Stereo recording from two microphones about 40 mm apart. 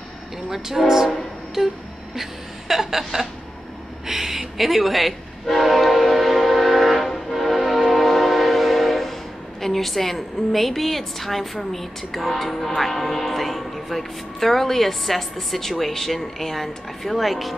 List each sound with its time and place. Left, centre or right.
0.5 s speech: centre
1.6 s music: centre
2.7 s speech: centre
4.1 s train horn: centre
9.6 s a woman's voice: centre